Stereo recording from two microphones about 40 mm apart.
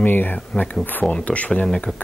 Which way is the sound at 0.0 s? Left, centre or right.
Left.